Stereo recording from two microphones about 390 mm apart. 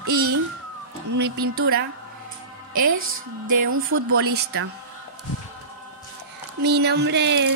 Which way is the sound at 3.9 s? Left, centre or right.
Right.